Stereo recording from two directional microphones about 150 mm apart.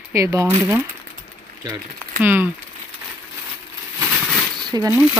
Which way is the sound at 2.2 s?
10° right (ahead or behind).